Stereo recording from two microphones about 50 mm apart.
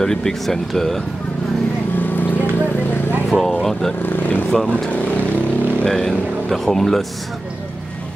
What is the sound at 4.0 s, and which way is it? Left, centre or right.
Vehicle, left.